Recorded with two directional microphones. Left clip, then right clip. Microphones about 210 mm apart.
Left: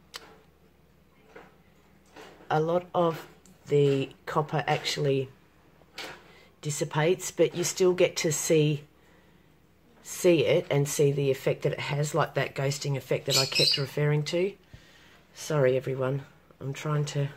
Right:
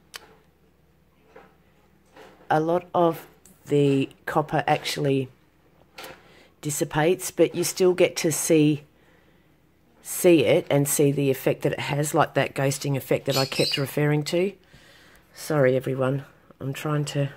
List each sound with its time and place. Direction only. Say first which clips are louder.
0.1 s tick-tock: right 2 dB; 30° right (ahead or behind)
2.4 s speech: right 4 dB; 35° right (ahead or behind)
6.3 s speech: right 7 dB; 35° right (ahead or behind)
10.0 s speech: right 5 dB; 35° right (ahead or behind)